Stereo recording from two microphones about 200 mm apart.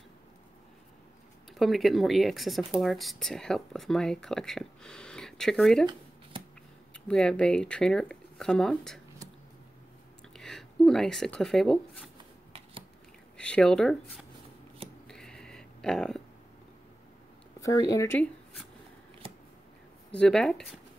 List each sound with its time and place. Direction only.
1.5 s speech: centre (ahead or behind)
6.9 s speech: 5° left (ahead or behind)
10.3 s speech: centre (ahead or behind)
13.4 s speech: 5° left (ahead or behind)
15.0 s a sound: 5° left (ahead or behind)
17.6 s speech: 15° left (ahead or behind)
20.1 s speech: 5° left (ahead or behind)